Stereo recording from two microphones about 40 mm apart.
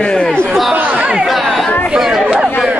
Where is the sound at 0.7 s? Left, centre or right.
Right.